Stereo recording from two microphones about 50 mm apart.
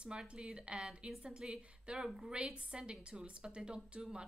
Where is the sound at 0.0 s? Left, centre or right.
Right.